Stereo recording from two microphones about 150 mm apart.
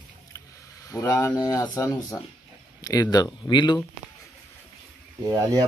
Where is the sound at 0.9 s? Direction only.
20° left (ahead or behind).